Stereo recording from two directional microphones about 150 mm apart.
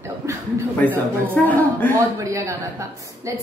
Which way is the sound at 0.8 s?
10° left (ahead or behind).